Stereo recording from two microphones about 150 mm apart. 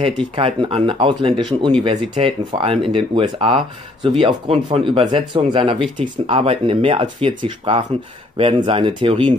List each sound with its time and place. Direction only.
0.0 s speech: 40° right (ahead or behind)